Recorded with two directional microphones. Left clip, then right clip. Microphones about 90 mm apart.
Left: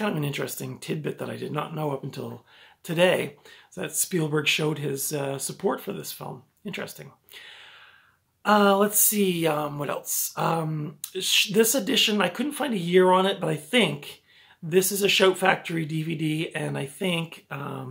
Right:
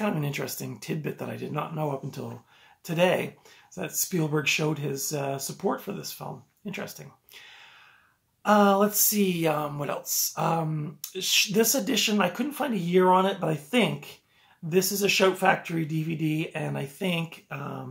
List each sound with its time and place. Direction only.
0.0 s speech: 20° left (ahead or behind)
8.4 s speech: 25° left (ahead or behind)